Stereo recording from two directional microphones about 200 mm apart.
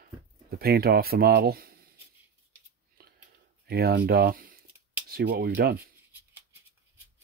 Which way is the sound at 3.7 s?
50° right (ahead or behind).